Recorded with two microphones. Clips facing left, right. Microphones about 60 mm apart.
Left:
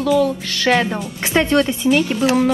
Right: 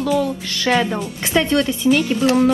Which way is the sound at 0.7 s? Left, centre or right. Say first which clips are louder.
Right 2 dB; centre.